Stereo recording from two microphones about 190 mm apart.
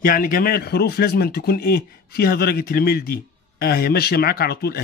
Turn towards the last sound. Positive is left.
turn(degrees=55)  # may be behind; listen again after turning